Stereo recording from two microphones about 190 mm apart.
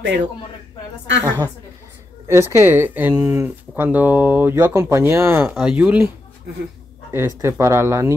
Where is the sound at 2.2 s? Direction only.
15° right (ahead or behind).